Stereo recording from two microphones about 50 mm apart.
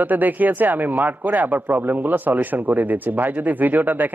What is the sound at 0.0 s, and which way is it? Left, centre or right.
Speech, right.